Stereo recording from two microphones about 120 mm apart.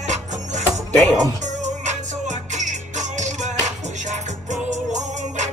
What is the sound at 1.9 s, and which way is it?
Music, 80° right.